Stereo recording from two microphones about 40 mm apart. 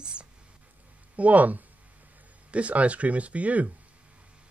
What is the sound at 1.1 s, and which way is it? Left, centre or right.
Speech, right.